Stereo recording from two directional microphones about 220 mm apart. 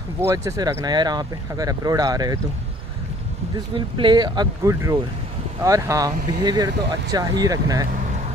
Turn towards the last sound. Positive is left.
turn(degrees=-15)  # may be behind; listen again after turning